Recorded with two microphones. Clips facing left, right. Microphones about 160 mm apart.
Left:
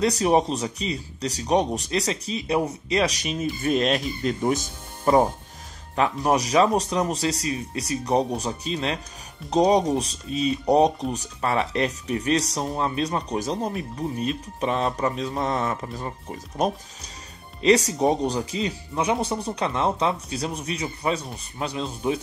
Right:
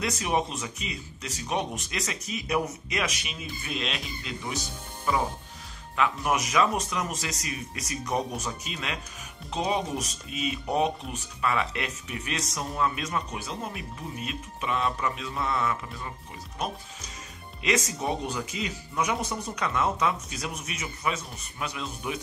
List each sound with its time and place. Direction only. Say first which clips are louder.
0.0 s speech: left 8 dB; 35° left (ahead or behind)
5.9 s speech: left 5 dB; 35° left (ahead or behind)